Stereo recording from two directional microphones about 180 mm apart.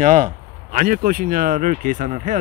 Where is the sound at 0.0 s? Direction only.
50° right (ahead or behind).